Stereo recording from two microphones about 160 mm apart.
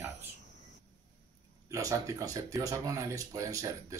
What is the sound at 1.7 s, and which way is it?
Speech, 20° right (ahead or behind).